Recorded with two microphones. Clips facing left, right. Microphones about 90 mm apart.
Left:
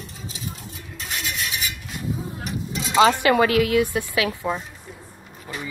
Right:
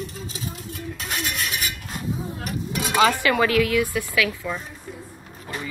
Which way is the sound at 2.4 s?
55° right (ahead or behind).